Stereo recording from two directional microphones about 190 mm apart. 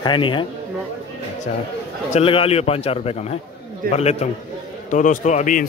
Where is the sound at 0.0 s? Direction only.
25° left (ahead or behind).